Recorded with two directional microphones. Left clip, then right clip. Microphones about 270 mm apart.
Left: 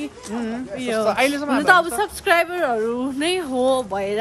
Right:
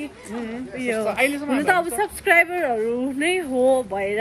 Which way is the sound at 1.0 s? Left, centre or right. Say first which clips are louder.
Left 4 dB; left.